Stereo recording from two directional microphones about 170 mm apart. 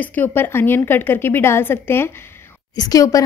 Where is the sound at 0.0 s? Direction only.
10° left (ahead or behind).